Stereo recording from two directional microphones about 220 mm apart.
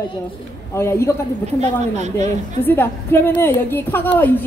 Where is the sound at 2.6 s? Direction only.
10° left (ahead or behind).